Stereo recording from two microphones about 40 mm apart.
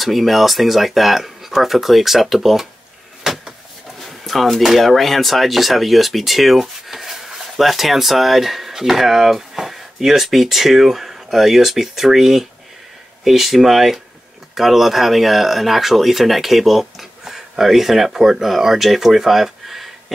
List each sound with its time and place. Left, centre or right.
0.0 s speech: centre
3.3 s a sound: centre
4.0 s speech: centre